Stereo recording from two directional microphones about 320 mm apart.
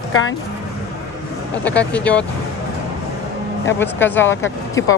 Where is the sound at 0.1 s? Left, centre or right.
Left.